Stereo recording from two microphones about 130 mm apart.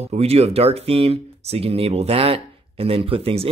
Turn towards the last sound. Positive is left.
turn(degrees=-50)  # may be behind; listen again after turning